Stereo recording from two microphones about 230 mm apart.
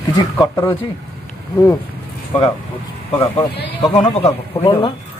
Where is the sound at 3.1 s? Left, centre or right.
Centre.